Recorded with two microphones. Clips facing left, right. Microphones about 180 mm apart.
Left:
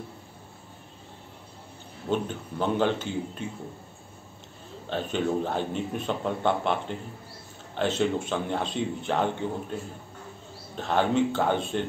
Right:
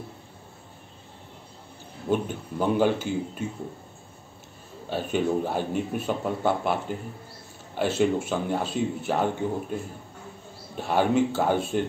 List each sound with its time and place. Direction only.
2.0 s speech: 10° right (ahead or behind)
4.8 s speech: 10° right (ahead or behind)
10.8 s speech: 10° right (ahead or behind)